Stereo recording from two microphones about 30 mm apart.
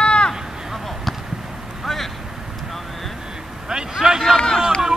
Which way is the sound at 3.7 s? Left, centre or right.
Right.